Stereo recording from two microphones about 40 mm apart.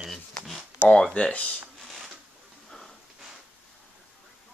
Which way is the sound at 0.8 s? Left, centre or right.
Left.